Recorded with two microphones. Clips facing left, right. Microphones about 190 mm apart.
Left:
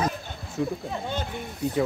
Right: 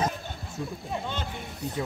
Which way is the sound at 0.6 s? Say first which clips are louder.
Left 8 dB; 70° left (ahead or behind).